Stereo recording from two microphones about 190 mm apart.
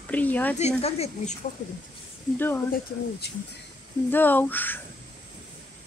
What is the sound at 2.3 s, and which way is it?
Speech, 10° left (ahead or behind).